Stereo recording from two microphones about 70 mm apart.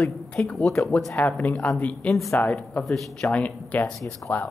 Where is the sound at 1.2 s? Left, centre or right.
Left.